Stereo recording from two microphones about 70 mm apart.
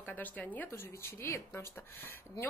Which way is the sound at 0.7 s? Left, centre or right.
Left.